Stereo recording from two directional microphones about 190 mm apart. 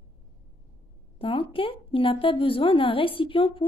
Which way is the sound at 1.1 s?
30° left (ahead or behind).